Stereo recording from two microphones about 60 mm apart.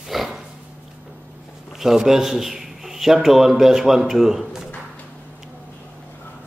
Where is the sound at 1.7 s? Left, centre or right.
Centre.